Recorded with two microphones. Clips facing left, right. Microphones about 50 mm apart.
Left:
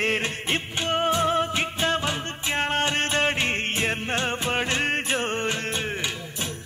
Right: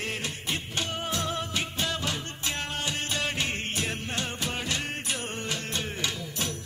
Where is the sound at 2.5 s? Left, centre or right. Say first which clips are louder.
Left 11 dB; left.